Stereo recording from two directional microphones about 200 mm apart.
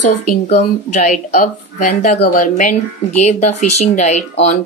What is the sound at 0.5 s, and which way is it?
Speech, 40° left (ahead or behind).